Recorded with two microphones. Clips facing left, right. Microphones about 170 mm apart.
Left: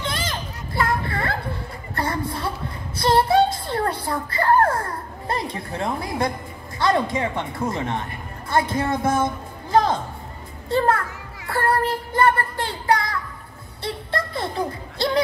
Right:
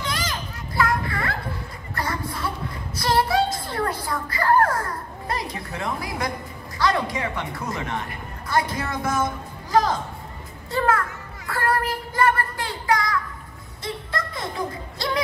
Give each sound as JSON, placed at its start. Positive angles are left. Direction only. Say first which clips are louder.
{"t": 0.0, "sound": "children playing", "louder": "left 1 dB", "side_deg": 25}
{"t": 2.0, "sound": "a sound", "louder": "left 3 dB", "side_deg": 30}
{"t": 3.0, "sound": "child singing", "louder": "left 4 dB", "side_deg": 30}
{"t": 3.5, "sound": "a sound", "louder": "left 2 dB", "side_deg": 30}
{"t": 6.8, "sound": "a man's voice", "louder": "left 3 dB", "side_deg": 25}
{"t": 13.8, "sound": "music", "louder": "left 3 dB", "side_deg": 30}